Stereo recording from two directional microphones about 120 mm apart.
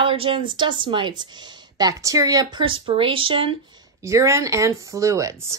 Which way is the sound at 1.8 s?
30° right (ahead or behind).